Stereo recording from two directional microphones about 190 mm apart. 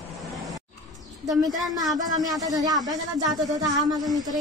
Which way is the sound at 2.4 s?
20° right (ahead or behind).